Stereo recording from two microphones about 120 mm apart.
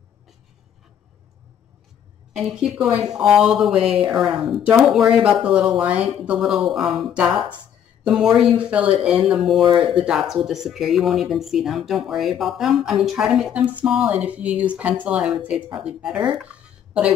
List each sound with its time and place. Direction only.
2.3 s speech: 5° right (ahead or behind)